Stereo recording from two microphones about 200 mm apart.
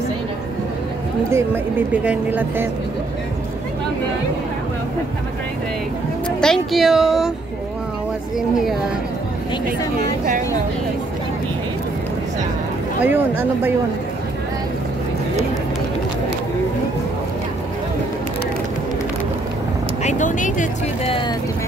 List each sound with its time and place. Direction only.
1.3 s speech: 10° right (ahead or behind)
6.4 s speech: centre (ahead or behind)
13.0 s speech: 10° right (ahead or behind)
20.0 s speech: 35° left (ahead or behind)